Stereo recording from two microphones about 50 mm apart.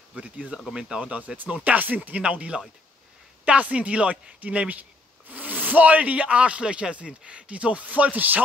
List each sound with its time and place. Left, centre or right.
0.1 s speech: right